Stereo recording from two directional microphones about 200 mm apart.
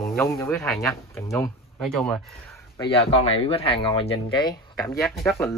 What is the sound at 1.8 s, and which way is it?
Speech, centre (ahead or behind).